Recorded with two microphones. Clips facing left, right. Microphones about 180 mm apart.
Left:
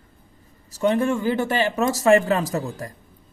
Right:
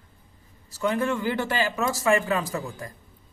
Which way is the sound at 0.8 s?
25° left (ahead or behind).